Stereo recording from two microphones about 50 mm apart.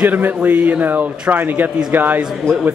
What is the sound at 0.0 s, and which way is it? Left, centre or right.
A man's voice, right.